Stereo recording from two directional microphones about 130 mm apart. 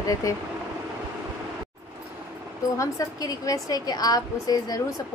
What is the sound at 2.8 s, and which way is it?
A woman's voice, 25° left (ahead or behind).